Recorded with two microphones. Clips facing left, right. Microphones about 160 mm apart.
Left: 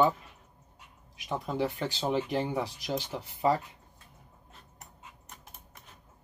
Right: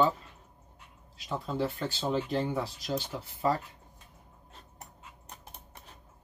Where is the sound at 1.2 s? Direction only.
15° left (ahead or behind).